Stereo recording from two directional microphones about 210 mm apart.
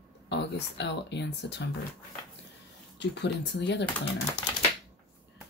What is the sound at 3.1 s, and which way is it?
Speech, 55° left (ahead or behind).